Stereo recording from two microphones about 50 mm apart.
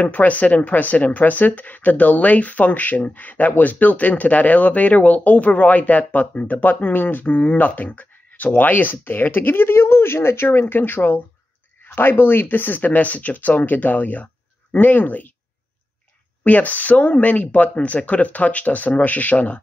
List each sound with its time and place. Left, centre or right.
0.0 s speech: left
16.4 s speech: left